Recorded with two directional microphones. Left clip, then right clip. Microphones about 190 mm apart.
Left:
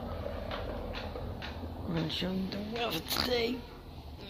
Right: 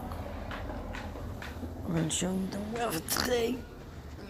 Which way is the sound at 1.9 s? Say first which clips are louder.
Right 2 dB; 5° left (ahead or behind).